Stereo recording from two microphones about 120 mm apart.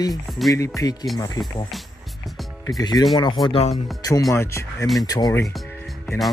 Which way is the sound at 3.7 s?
30° left (ahead or behind).